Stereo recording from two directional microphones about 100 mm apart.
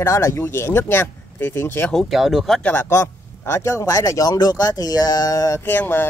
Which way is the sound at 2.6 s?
20° left (ahead or behind).